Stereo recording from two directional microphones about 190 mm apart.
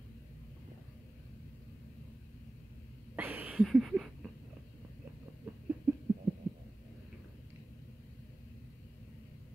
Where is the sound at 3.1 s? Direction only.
10° right (ahead or behind).